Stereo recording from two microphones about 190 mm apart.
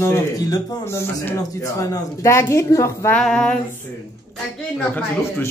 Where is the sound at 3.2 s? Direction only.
5° left (ahead or behind).